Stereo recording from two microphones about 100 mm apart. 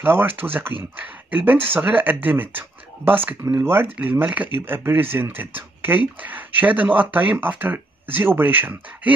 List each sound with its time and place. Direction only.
0.0 s speech: 20° right (ahead or behind)